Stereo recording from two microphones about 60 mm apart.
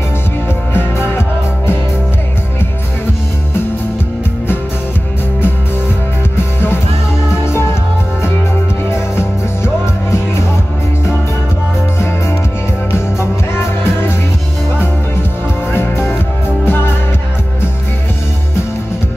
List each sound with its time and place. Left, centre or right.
0.7 s music: left
6.3 s music: left
8.9 s music: left
12.9 s music: left
15.7 s music: left